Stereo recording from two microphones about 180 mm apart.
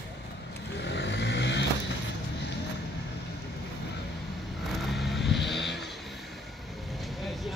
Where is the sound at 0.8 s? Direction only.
75° left (ahead or behind).